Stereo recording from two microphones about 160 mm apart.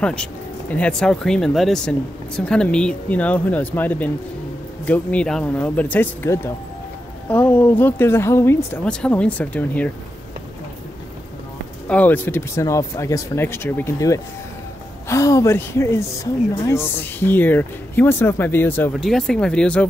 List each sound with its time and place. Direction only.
0.0 s speech: 5° left (ahead or behind)
8.8 s speech: 5° left (ahead or behind)
11.9 s speech: 10° left (ahead or behind)
18.9 s speech: centre (ahead or behind)